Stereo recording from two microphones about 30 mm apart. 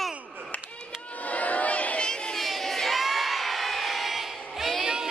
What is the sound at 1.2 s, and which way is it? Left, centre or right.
Crowd, left.